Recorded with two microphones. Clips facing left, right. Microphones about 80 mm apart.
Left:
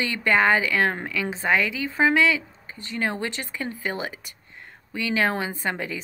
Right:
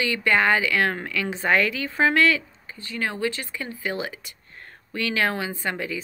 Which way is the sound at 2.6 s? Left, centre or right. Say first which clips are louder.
Left 2 dB; left.